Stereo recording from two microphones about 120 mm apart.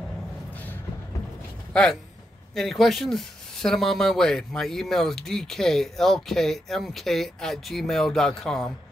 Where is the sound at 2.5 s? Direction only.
Centre (ahead or behind).